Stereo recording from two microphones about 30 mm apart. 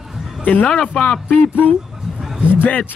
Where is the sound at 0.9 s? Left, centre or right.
Left.